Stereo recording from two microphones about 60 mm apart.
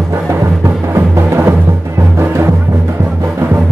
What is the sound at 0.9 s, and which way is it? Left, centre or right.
Music, right.